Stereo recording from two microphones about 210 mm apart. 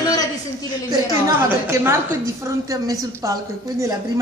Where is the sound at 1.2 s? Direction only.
15° right (ahead or behind).